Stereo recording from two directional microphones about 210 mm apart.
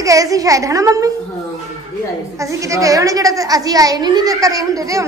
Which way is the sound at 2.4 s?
15° right (ahead or behind).